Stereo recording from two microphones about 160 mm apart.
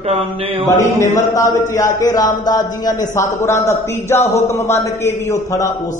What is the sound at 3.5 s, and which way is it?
Speech, 45° left (ahead or behind).